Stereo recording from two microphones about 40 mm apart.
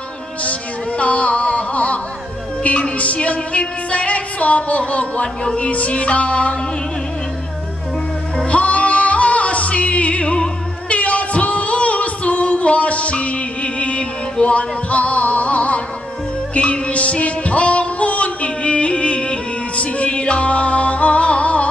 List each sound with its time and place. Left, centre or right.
0.4 s music: left
8.5 s music: left